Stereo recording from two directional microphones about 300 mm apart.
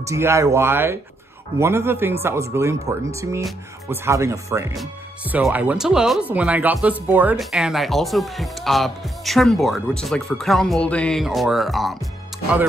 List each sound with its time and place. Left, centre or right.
0.0 s speech: centre